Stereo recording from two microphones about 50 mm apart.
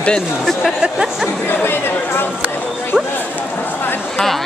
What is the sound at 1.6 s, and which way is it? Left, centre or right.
Speech, left.